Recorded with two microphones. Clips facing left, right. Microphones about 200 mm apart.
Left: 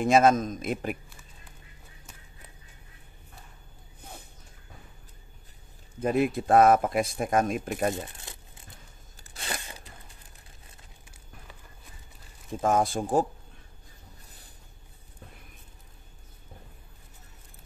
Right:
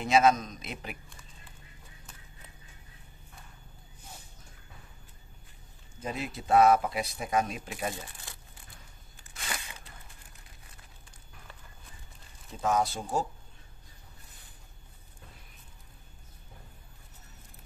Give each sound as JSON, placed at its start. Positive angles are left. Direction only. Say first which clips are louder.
{"t": 0.0, "sound": "speech", "louder": "left 3 dB", "side_deg": 50}
{"t": 5.9, "sound": "speech", "louder": "left 11 dB", "side_deg": 55}
{"t": 7.9, "sound": "speech", "louder": "left 7 dB", "side_deg": 20}
{"t": 9.3, "sound": "a sound", "louder": "left 3 dB", "side_deg": 35}
{"t": 12.5, "sound": "speech", "louder": "left 4 dB", "side_deg": 50}